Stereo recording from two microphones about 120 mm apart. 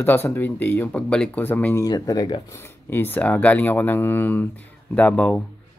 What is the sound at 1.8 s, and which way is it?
Speech, 30° left (ahead or behind).